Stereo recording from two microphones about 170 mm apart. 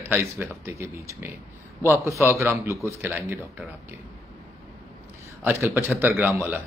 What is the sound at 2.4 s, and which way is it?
Speech, 15° right (ahead or behind).